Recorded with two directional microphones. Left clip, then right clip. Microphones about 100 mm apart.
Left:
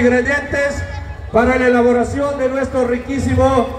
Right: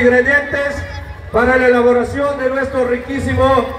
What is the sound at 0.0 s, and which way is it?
A man's voice, 10° left (ahead or behind).